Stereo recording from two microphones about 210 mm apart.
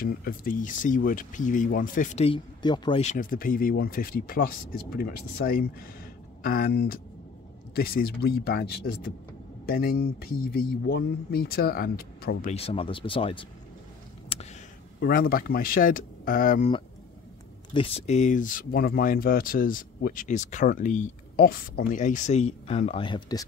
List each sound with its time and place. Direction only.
0.0 s speech: 45° left (ahead or behind); by 3.0 s 20° left (ahead or behind)
3.0 s speech: 35° left (ahead or behind)
12.4 s speech: 25° left (ahead or behind)
15.0 s speech: 45° left (ahead or behind)
17.7 s speech: 30° left (ahead or behind)